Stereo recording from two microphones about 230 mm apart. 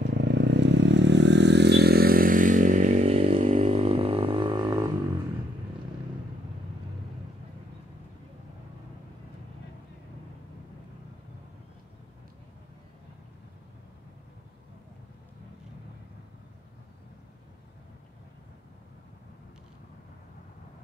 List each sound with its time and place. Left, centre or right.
0.0 s vehicle: right; by 4.9 s centre